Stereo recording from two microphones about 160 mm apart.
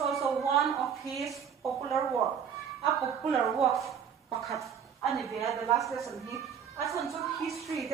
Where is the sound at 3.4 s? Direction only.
Centre (ahead or behind).